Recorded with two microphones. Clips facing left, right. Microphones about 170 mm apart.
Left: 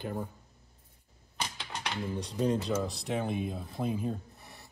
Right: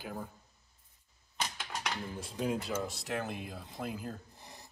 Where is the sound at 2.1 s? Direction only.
5° right (ahead or behind).